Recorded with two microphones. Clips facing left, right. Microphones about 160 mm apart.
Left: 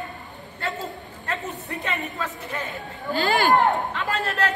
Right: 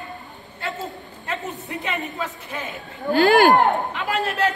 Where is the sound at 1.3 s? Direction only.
20° right (ahead or behind).